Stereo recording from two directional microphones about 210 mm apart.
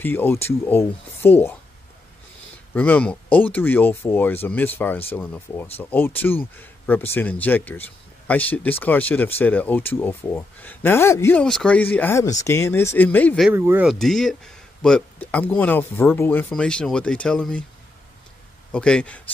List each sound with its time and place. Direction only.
0.0 s speech: 10° left (ahead or behind)
2.7 s speech: 5° left (ahead or behind)
13.5 s speech: 10° right (ahead or behind)
13.8 s speech: centre (ahead or behind)
18.7 s speech: 5° left (ahead or behind)